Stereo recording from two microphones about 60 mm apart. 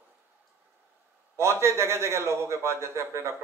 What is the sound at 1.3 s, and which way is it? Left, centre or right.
A man's voice, right.